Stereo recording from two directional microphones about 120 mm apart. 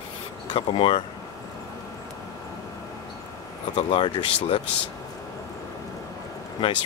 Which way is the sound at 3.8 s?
45° left (ahead or behind).